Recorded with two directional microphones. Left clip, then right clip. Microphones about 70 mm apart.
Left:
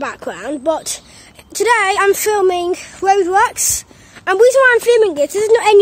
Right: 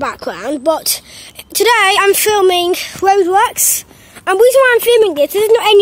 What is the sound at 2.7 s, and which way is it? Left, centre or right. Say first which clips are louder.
Speech: right 4 dB; right.